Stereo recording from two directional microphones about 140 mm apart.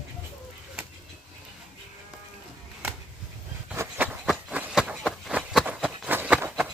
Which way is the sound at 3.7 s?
10° right (ahead or behind).